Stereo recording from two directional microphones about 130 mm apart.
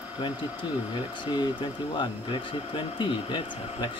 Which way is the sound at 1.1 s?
35° left (ahead or behind).